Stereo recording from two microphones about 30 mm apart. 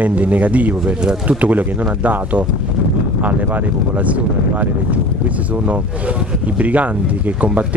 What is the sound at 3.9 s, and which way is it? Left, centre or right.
Speech, right.